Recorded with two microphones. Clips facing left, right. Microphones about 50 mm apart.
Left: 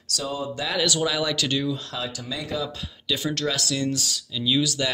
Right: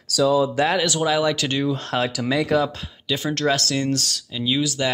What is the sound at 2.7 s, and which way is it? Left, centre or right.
Speech, right.